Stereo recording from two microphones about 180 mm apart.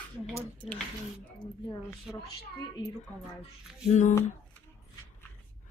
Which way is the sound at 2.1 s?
Centre (ahead or behind).